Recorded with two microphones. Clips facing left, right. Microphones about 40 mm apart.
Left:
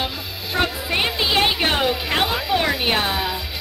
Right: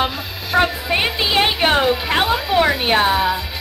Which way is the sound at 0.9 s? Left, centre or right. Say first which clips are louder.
Right 2 dB; centre.